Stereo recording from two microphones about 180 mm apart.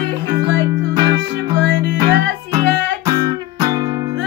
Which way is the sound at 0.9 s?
25° right (ahead or behind).